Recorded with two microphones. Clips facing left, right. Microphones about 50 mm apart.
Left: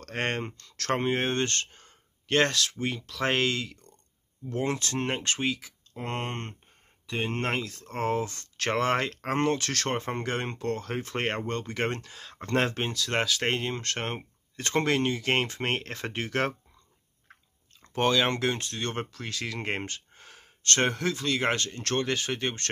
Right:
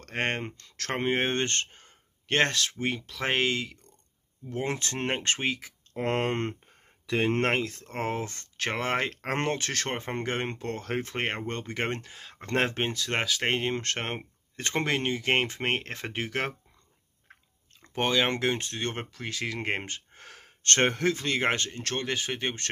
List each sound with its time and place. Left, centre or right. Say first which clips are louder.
0.0 s speech: even; right
6.0 s speech: right 6 dB; right
7.4 s speech: right 3 dB; right
8.5 s speech: left 2 dB; centre
9.2 s speech: left 3 dB; right
9.6 s speech: left 2 dB; centre
10.8 s speech: right 2 dB; right
11.1 s speech: left 1 dB; centre
14.7 s speech: left 2 dB; centre
17.8 s speech: left 1 dB; centre
20.2 s a sound: right 3 dB; right
20.6 s speech: right 2 dB; right
21.8 s speech: left 5 dB; centre